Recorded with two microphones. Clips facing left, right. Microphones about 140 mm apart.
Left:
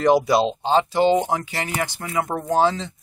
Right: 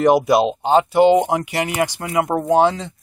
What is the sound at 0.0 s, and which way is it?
Speech, 15° right (ahead or behind).